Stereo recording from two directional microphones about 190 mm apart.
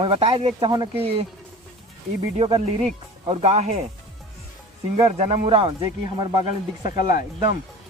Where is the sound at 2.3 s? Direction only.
30° right (ahead or behind).